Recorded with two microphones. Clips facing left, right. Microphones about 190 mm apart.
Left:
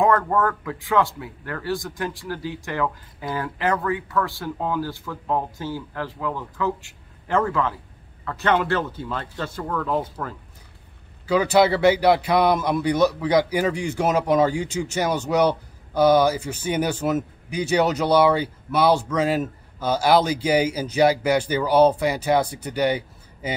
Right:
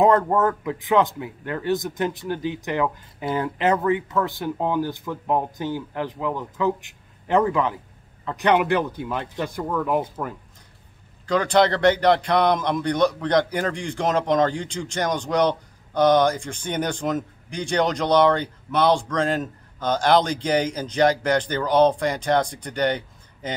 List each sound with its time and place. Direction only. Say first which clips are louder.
0.2 s speech: right 2 dB; 20° right (ahead or behind)
11.2 s a man's voice: left 1 dB; 5° left (ahead or behind)